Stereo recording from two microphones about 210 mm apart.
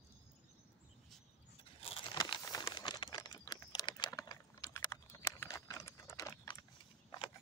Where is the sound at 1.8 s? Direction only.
25° left (ahead or behind).